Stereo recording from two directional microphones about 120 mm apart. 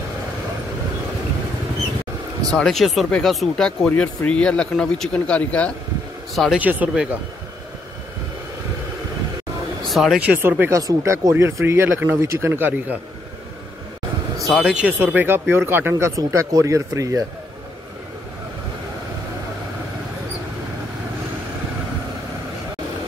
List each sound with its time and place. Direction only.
2.5 s speech: centre (ahead or behind)
6.6 s speech: 15° right (ahead or behind)
9.8 s speech: centre (ahead or behind)
10.2 s speech: 15° right (ahead or behind)
10.7 s speech: 30° right (ahead or behind)
14.6 s speech: 10° right (ahead or behind); by 17.2 s 25° right (ahead or behind)